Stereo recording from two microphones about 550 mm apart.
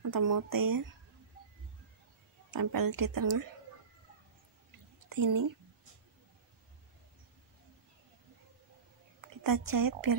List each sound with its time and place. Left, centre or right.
0.0 s speech: right
2.5 s speech: right
5.1 s speech: right
9.2 s a woman's voice: right